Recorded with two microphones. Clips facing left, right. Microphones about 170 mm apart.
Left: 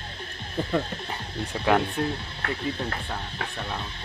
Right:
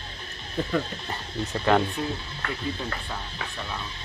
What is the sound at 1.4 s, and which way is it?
Speech, 10° left (ahead or behind).